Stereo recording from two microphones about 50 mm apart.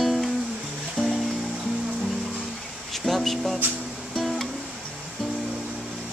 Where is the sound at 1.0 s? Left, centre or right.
Left.